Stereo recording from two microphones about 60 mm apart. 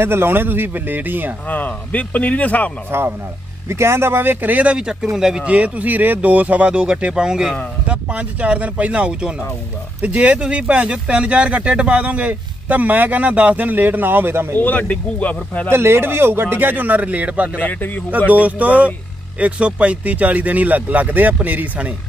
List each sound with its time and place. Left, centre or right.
0.0 s speech: right
1.5 s speech: left
2.9 s a man's voice: right
4.7 s speech: centre
5.5 s speech: right
7.8 s speech: right
14.6 s speech: left
15.7 s speech: right
17.6 s speech: left
18.3 s speech: right